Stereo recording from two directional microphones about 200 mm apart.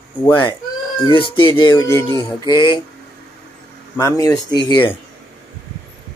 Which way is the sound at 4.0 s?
15° left (ahead or behind).